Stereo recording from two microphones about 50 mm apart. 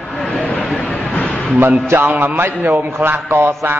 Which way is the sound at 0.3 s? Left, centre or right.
Left.